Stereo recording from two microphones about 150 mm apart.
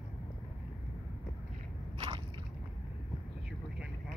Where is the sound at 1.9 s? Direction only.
35° right (ahead or behind).